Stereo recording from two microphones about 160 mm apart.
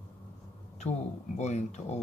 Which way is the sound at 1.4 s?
45° left (ahead or behind).